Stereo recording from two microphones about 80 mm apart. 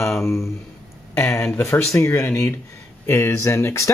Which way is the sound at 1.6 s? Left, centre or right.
Left.